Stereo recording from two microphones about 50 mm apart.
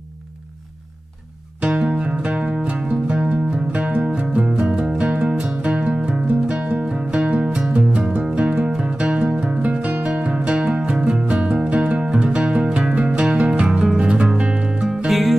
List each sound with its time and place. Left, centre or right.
1.7 s music: centre
5.3 s music: centre
5.6 s music: right
7.4 s music: centre
15.0 s music: centre